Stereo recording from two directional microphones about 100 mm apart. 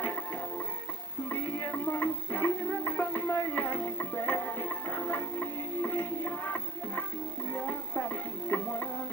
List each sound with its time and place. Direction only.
1.3 s music: 20° left (ahead or behind)